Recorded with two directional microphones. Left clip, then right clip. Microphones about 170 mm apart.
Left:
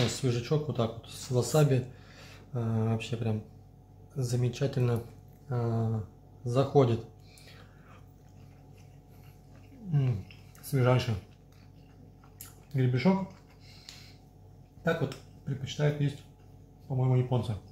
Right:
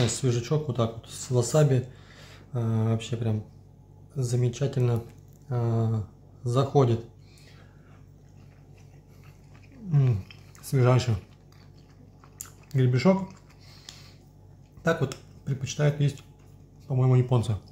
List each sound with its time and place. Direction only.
0.2 s speech: 15° right (ahead or behind)
9.8 s speech: 35° right (ahead or behind)
12.4 s chewing: 30° right (ahead or behind)
14.8 s speech: 30° right (ahead or behind)